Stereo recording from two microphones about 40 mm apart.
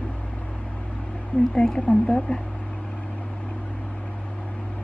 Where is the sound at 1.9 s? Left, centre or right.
Left.